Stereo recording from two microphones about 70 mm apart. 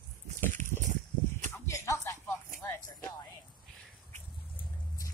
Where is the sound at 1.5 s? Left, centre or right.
Left.